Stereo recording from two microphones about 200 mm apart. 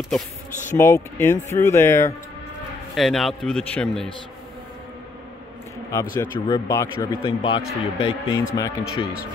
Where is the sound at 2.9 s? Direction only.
Centre (ahead or behind).